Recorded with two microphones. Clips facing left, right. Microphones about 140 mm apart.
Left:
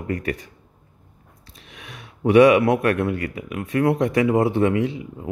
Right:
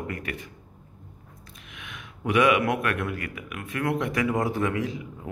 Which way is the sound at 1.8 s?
35° left (ahead or behind).